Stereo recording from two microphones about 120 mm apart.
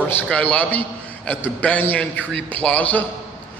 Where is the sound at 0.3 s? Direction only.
10° left (ahead or behind).